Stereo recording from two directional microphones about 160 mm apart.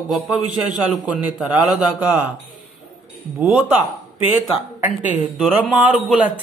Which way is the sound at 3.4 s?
10° right (ahead or behind).